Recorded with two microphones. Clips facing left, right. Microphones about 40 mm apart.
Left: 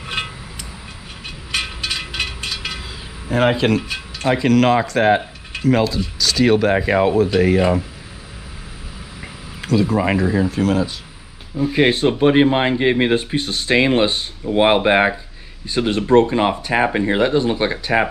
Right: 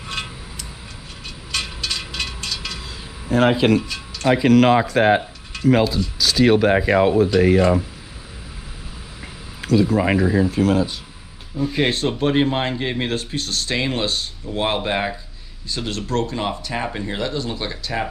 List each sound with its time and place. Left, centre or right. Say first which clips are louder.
0.0 s a sound: left 4 dB; left
1.5 s a sound: left 3 dB; left
3.3 s speech: even; centre
3.8 s music: left 1 dB; left
4.3 s speech: right 1 dB; centre
9.6 s speech: even; centre
11.5 s speech: left 4 dB; centre; by 18.0 s left